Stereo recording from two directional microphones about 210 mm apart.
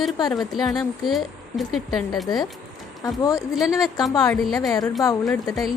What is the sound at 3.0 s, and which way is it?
Speech, 15° left (ahead or behind).